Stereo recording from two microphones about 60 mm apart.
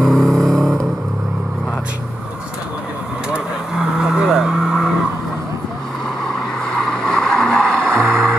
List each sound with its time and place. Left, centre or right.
0.0 s vehicle: centre
4.0 s vehicle: centre
7.1 s vehicle: centre
7.9 s music: right